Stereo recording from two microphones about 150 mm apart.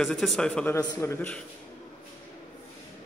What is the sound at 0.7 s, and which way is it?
Speech, 20° left (ahead or behind).